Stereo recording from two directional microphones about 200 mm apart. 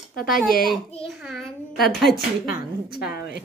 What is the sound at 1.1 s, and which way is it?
A woman's voice, centre (ahead or behind).